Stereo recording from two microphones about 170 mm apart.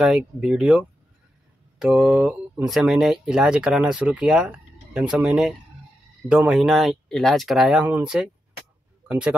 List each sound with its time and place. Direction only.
0.0 s speech: centre (ahead or behind)